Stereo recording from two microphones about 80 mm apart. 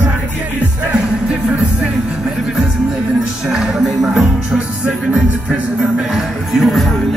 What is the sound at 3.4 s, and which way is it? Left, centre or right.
Music, centre.